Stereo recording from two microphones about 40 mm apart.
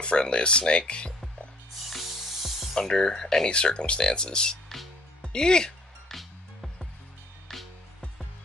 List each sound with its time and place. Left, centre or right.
0.0 s speech: left
1.9 s music: centre
2.9 s speech: centre
6.0 s music: centre